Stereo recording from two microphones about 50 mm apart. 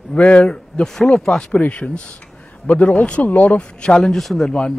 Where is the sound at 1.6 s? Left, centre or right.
Left.